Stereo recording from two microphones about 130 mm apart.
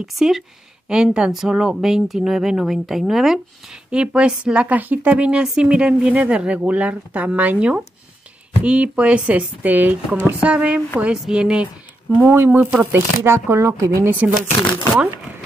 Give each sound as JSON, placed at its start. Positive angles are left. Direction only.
{"t": 0.0, "sound": "speech", "side_deg": -5}